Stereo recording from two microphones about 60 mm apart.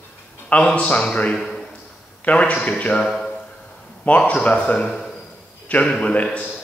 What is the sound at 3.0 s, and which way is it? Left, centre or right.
Speech, centre.